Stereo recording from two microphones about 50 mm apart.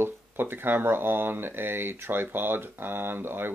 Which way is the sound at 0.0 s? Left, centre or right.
Right.